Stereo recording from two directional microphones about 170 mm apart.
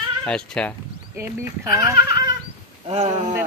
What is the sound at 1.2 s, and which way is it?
A woman's voice, 15° right (ahead or behind).